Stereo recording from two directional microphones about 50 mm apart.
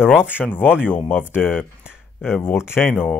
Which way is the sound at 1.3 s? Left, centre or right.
Left.